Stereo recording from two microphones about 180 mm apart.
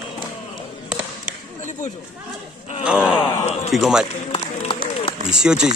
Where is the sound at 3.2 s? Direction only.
35° left (ahead or behind).